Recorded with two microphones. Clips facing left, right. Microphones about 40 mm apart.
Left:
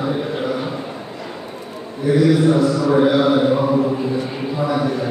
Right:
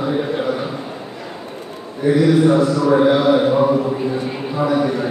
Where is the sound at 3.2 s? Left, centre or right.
Centre.